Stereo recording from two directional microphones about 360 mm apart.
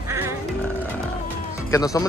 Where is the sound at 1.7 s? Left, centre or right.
Centre.